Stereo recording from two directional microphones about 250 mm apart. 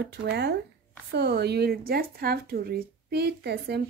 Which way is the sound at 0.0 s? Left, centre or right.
Right.